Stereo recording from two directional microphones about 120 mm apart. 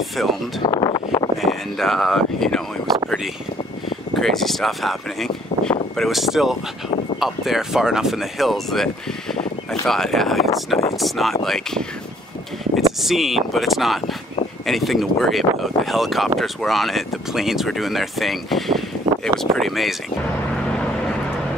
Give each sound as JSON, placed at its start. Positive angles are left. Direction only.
{"t": 0.6, "sound": "speech", "side_deg": 40}
{"t": 1.4, "sound": "speech", "side_deg": 0}
{"t": 4.1, "sound": "speech", "side_deg": 0}
{"t": 13.0, "sound": "speech", "side_deg": 0}